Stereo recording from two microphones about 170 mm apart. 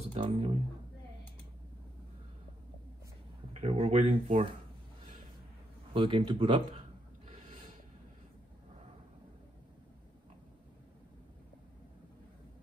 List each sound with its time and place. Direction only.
0.0 s speech: 35° right (ahead or behind)
3.5 s speech: 40° right (ahead or behind)
5.9 s speech: 30° right (ahead or behind)